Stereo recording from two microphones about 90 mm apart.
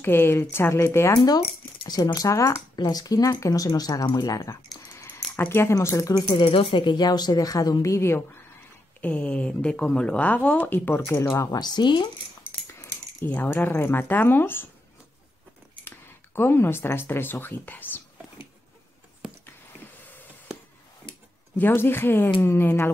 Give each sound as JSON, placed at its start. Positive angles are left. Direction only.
{"t": 0.0, "sound": "speech", "side_deg": 25}
{"t": 1.9, "sound": "speech", "side_deg": 45}
{"t": 2.7, "sound": "speech", "side_deg": 50}
{"t": 5.0, "sound": "speech", "side_deg": 25}
{"t": 6.3, "sound": "speech", "side_deg": 80}
{"t": 9.0, "sound": "speech", "side_deg": 15}
{"t": 11.6, "sound": "speech", "side_deg": 55}
{"t": 13.2, "sound": "speech", "side_deg": 20}
{"t": 16.3, "sound": "speech", "side_deg": 25}
{"t": 21.5, "sound": "speech", "side_deg": 25}